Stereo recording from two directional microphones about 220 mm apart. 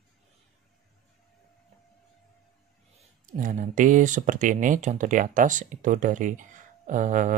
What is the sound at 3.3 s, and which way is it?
Speech, 35° right (ahead or behind).